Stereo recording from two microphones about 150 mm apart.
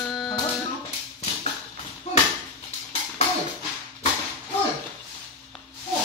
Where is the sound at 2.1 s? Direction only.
45° left (ahead or behind).